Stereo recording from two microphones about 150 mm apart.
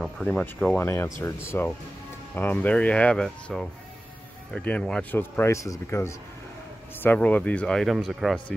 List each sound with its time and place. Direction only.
0.0 s speech: 5° left (ahead or behind)
0.7 s speech: 20° left (ahead or behind); by 8.5 s centre (ahead or behind)